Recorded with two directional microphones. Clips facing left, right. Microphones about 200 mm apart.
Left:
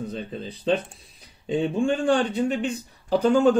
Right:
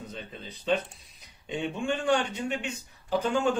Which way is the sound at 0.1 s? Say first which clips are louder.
Left 9 dB; 30° left (ahead or behind).